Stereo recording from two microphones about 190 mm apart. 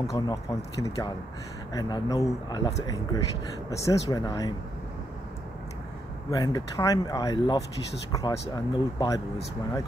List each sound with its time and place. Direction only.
0.0 s speech: 15° left (ahead or behind)
3.8 s speech: 20° left (ahead or behind)
6.3 s speech: 20° left (ahead or behind)